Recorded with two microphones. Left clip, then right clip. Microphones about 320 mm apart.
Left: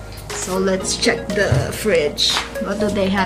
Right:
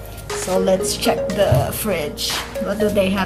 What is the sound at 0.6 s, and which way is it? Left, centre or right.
Speech, centre.